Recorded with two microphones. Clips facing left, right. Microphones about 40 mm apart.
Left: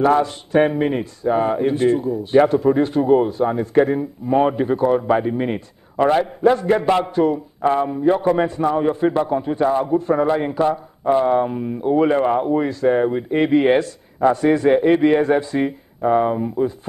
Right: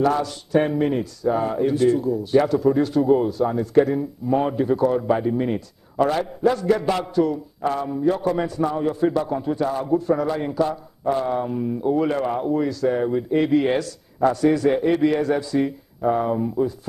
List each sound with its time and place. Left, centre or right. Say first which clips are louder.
0.0 s speech: left 4 dB; left